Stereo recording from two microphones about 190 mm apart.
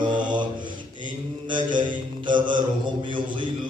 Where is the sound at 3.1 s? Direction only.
25° right (ahead or behind).